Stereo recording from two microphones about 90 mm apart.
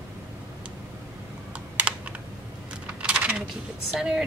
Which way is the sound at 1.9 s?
10° right (ahead or behind).